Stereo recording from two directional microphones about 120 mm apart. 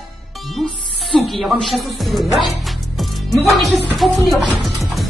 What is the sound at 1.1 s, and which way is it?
Speech, 5° left (ahead or behind).